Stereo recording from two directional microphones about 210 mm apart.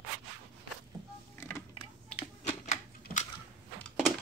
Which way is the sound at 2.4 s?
35° left (ahead or behind).